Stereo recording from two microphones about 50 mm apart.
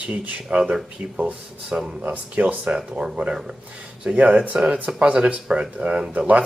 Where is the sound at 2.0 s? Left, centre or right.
Right.